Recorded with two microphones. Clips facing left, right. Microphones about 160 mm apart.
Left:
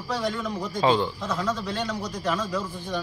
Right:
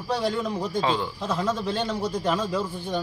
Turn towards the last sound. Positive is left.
turn(degrees=-30)  # may be behind; listen again after turning